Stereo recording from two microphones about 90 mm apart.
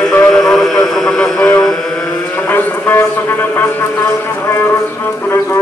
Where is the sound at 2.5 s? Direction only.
20° left (ahead or behind).